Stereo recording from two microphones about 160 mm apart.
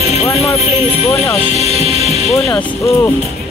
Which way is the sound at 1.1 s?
Centre (ahead or behind).